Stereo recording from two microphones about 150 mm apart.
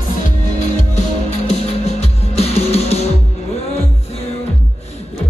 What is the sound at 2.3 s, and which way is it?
Music, 45° left (ahead or behind).